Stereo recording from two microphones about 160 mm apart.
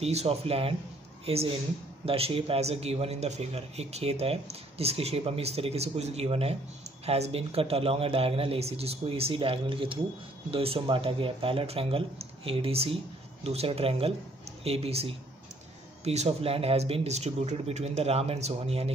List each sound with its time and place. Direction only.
0.0 s a man's voice: 40° right (ahead or behind)